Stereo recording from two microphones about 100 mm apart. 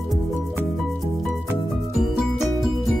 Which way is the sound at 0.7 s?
Centre (ahead or behind).